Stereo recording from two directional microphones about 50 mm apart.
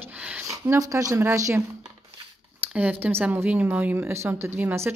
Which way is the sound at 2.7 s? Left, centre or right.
Right.